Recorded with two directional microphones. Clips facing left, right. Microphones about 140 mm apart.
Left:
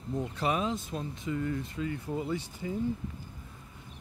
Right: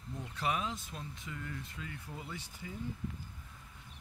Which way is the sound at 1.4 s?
20° left (ahead or behind).